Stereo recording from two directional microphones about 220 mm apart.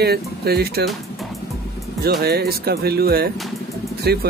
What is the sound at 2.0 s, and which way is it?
Speech, 45° right (ahead or behind).